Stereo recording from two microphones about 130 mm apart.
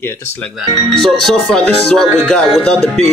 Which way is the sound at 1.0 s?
Centre (ahead or behind).